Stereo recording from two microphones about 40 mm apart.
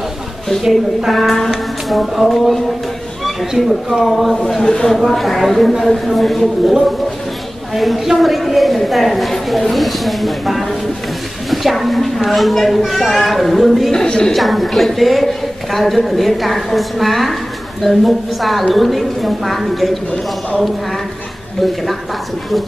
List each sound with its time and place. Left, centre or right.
0.6 s a woman's voice: centre
4.6 s a woman's voice: centre
7.7 s a woman's voice: centre
14.0 s a woman's voice: left
14.3 s a woman's voice: centre